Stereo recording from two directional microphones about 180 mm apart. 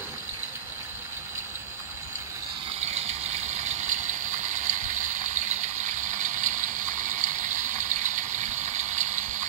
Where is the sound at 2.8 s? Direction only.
35° right (ahead or behind).